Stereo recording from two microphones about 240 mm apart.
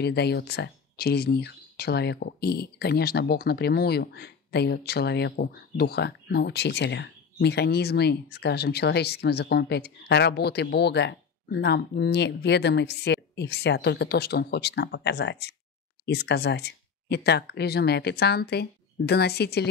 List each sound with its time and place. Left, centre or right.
0.0 s speech: left